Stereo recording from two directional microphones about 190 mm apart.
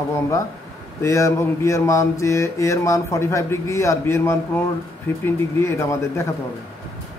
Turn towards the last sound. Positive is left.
turn(degrees=15)  # may be behind; listen again after turning